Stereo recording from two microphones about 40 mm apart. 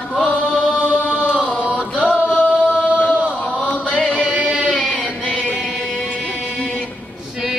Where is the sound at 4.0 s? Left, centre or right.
Left.